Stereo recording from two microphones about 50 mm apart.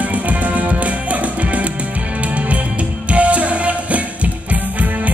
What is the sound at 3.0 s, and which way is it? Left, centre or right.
Music, right.